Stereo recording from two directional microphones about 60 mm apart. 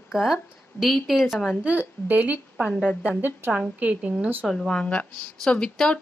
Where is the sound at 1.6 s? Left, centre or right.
Right.